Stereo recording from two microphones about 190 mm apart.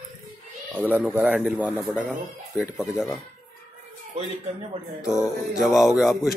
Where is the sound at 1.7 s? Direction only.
5° left (ahead or behind).